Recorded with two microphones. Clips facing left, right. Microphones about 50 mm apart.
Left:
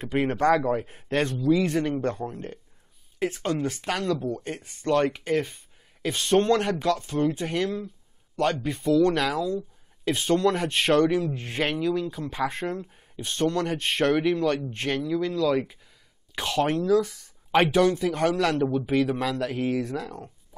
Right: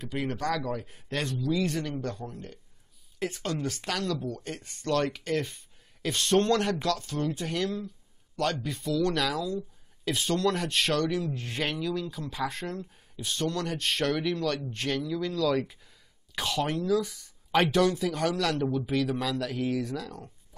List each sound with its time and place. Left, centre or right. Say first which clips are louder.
0.0 s speech: left 8 dB; left
3.2 s speech: left 5 dB; left
18.4 s speech: left 4 dB; left